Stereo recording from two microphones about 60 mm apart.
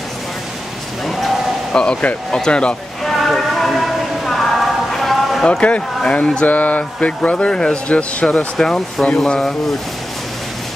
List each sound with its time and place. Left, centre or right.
1.7 s speech: centre
3.0 s a sound: centre
6.0 s speech: centre
6.4 s a sound: left
6.8 s speech: centre
8.5 s speech: centre